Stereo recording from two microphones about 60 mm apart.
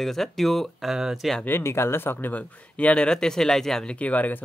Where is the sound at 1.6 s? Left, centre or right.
Left.